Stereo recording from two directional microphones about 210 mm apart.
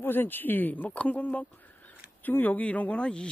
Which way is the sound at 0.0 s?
10° left (ahead or behind).